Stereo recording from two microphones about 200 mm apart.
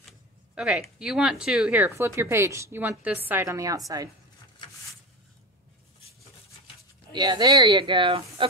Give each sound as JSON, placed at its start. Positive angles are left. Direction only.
{"t": 0.6, "sound": "speech", "side_deg": -5}
{"t": 7.1, "sound": "speech", "side_deg": -20}